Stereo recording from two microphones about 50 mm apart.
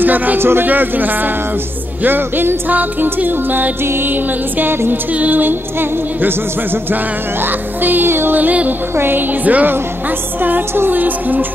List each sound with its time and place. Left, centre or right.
0.0 s speech: right
0.4 s music: right
0.7 s music: right
3.8 s music: right
4.1 s music: right
8.4 s music: right
8.9 s music: right
10.9 s music: right